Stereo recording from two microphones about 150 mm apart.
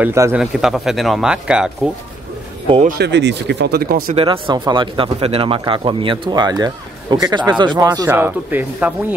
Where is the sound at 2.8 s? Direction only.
90° right.